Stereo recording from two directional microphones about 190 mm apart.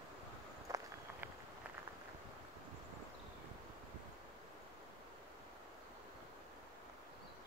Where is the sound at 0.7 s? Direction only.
15° right (ahead or behind).